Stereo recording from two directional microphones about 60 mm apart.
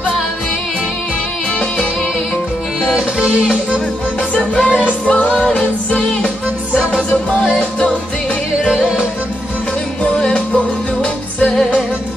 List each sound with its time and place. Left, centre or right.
4.4 s music: left
10.3 s music: left